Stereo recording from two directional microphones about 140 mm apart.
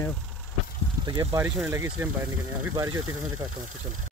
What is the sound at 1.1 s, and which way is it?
Speech, 25° right (ahead or behind).